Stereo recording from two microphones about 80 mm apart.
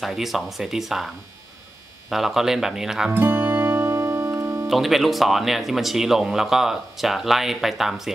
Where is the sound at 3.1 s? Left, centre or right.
Right.